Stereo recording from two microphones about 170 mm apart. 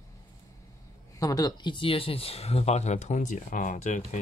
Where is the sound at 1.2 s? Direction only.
20° left (ahead or behind).